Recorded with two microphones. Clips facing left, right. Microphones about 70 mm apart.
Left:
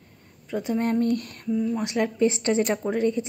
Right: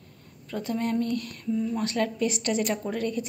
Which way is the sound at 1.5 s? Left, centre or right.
Centre.